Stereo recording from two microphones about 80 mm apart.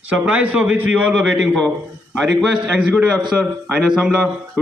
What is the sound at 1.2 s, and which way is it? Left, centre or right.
Speech, centre.